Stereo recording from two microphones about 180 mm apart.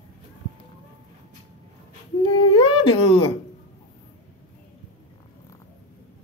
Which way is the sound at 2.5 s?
25° left (ahead or behind).